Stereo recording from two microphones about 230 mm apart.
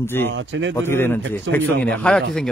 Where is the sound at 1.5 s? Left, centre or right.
Right.